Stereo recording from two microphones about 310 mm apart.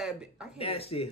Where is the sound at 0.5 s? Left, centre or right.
Centre.